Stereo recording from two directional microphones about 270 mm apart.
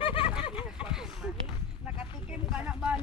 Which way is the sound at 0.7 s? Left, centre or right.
Centre.